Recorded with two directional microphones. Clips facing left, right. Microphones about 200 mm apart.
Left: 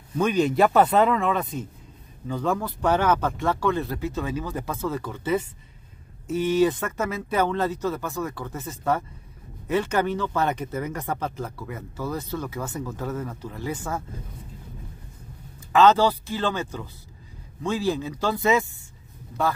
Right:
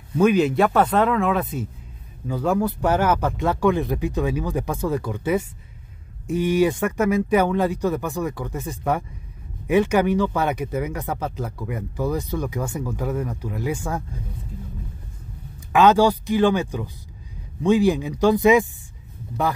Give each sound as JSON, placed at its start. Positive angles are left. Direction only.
{"t": 0.2, "sound": "speech", "side_deg": -5}
{"t": 15.7, "sound": "speech", "side_deg": -15}